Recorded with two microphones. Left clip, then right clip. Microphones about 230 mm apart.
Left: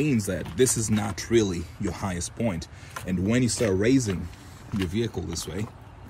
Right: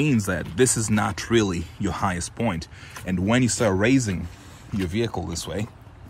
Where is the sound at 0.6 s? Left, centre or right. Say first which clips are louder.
Right 3 dB; centre.